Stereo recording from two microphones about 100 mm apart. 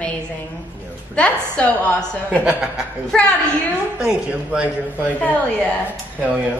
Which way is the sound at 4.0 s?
10° right (ahead or behind).